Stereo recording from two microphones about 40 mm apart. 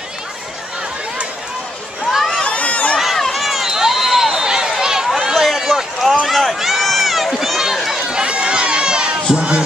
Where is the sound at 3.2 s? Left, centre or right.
Centre.